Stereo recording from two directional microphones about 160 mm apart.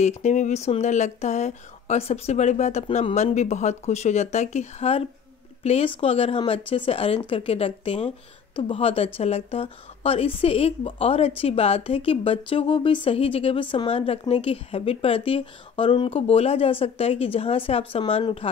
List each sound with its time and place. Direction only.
0.0 s a woman's voice: 45° left (ahead or behind)